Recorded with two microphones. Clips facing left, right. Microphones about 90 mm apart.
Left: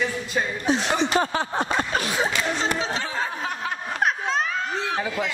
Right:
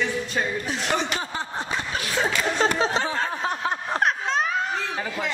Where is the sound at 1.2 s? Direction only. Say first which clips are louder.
Left 6 dB; 80° left; by 2.0 s 60° left (ahead or behind).